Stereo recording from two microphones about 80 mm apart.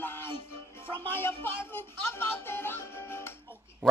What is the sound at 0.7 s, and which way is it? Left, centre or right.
Music, left.